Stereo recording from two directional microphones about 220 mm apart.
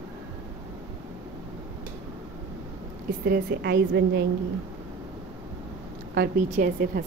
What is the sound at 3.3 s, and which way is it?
Speech, 50° right (ahead or behind).